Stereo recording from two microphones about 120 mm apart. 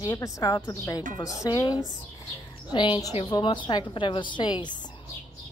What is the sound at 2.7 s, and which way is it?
A woman's voice, 40° left (ahead or behind).